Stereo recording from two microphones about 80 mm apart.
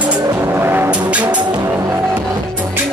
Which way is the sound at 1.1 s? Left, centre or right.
Centre.